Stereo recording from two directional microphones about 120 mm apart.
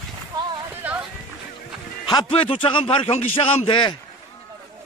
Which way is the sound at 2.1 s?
45° left (ahead or behind).